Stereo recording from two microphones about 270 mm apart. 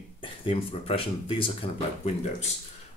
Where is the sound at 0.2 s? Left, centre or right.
Centre.